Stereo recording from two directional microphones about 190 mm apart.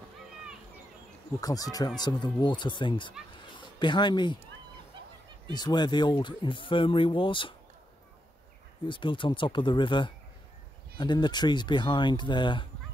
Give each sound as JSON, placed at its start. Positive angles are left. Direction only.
{"t": 1.4, "sound": "speech", "side_deg": 20}
{"t": 5.5, "sound": "speech", "side_deg": 20}
{"t": 8.8, "sound": "speech", "side_deg": 25}